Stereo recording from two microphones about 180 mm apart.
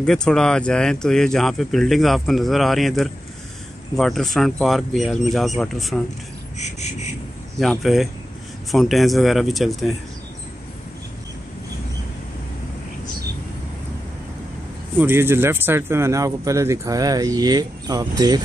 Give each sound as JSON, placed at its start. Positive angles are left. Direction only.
{"t": 0.0, "sound": "speech", "side_deg": 5}
{"t": 6.6, "sound": "insect", "side_deg": 40}
{"t": 7.5, "sound": "speech", "side_deg": 0}
{"t": 15.0, "sound": "speech", "side_deg": -10}